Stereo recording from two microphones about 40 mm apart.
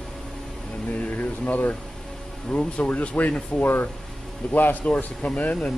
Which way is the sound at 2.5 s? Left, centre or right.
Left.